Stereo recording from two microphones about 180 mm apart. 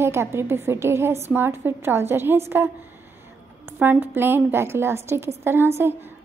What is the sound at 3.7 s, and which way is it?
A woman's voice, 10° right (ahead or behind).